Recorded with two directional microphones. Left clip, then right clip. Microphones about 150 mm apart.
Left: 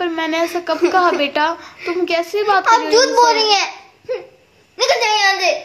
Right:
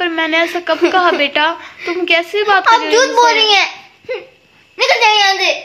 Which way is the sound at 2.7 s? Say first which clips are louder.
Right 2 dB; 70° right (ahead or behind).